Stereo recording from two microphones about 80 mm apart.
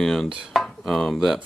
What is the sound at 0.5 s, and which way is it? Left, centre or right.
Chopping, centre.